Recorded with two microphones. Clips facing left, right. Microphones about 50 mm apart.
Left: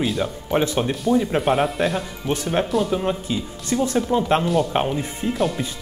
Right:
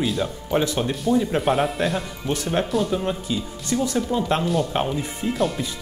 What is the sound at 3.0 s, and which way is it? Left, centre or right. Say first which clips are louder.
Speech: left 2 dB; left.